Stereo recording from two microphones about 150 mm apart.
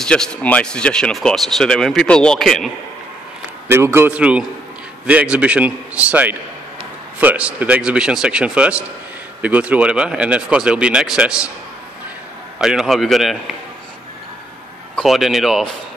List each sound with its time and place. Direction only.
0.0 s speech: 5° left (ahead or behind)
3.7 s speech: 15° right (ahead or behind)
12.5 s speech: 5° right (ahead or behind)
15.0 s speech: centre (ahead or behind)